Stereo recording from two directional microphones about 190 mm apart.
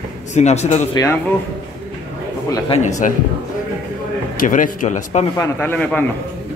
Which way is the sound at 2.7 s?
40° left (ahead or behind).